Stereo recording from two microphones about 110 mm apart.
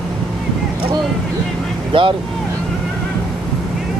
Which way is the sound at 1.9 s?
50° right (ahead or behind).